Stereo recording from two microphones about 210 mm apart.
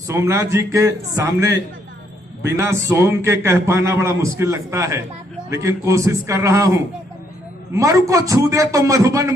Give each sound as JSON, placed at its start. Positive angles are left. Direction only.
{"t": 0.1, "sound": "a man's voice", "side_deg": -15}